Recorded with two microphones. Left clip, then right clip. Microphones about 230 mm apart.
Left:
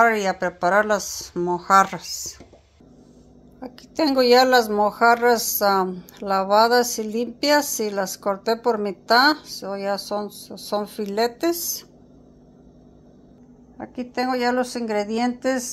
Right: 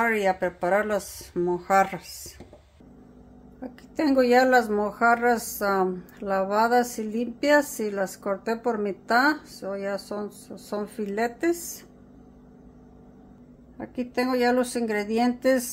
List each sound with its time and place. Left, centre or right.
0.0 s speech: centre
3.6 s speech: centre
13.7 s speech: centre